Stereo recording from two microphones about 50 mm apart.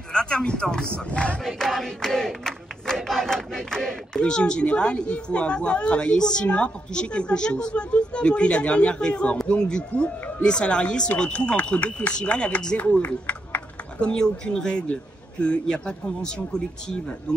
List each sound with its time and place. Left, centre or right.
0.1 s speech: centre
14.0 s a man's voice: centre